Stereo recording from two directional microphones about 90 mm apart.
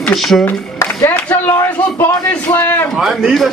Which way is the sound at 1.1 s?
15° left (ahead or behind).